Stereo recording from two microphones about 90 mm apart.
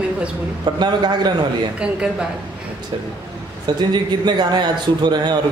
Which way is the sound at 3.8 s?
55° right (ahead or behind).